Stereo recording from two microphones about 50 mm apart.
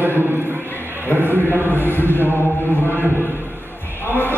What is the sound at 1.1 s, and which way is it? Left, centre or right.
Speech, right.